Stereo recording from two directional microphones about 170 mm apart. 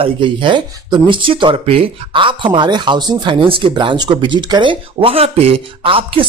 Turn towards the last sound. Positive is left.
turn(degrees=-30)  # may be behind; listen again after turning